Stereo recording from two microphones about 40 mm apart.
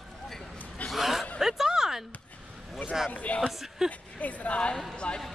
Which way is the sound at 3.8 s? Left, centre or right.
Centre.